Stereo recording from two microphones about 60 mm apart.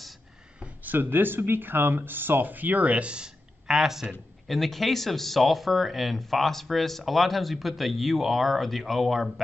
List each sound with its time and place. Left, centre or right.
0.8 s speech: right; by 3.7 s centre
3.7 s speech: centre